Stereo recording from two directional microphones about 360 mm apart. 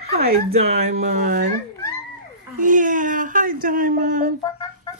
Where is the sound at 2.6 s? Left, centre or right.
Right.